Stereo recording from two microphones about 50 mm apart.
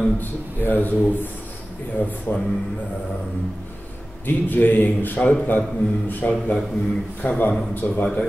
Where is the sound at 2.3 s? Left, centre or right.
Left.